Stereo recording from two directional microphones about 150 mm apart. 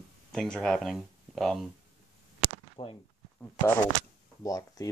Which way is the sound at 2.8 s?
35° left (ahead or behind).